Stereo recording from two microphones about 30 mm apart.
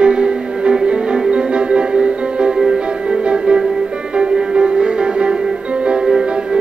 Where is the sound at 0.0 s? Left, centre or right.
Right.